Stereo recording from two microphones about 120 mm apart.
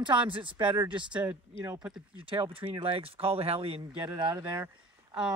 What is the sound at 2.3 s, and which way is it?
Speech, 45° right (ahead or behind).